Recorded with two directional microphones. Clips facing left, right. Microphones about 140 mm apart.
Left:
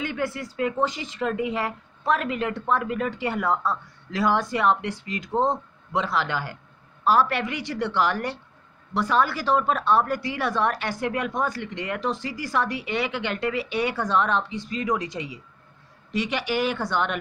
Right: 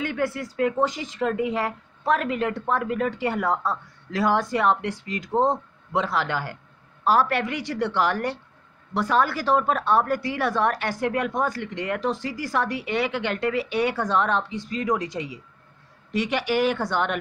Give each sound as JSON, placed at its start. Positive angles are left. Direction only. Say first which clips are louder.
{"t": 0.0, "sound": "speech", "louder": "right 2 dB", "side_deg": -50}